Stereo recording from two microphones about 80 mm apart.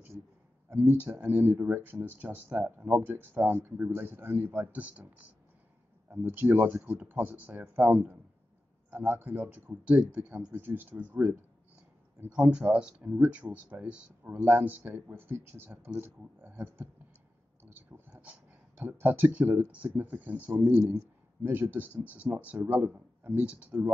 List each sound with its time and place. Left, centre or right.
0.7 s speech: right
17.6 s a sound: right
18.1 s speech: centre
20.6 s speech: right; by 23.9 s centre